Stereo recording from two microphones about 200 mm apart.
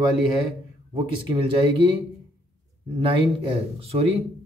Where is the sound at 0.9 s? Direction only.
25° right (ahead or behind).